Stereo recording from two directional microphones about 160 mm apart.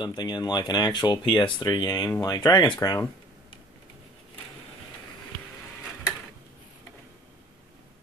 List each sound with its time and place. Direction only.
0.0 s speech: 25° left (ahead or behind)